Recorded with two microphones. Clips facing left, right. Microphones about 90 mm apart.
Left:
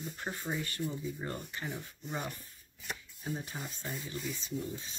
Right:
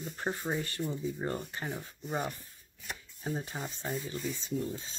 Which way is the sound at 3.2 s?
20° right (ahead or behind).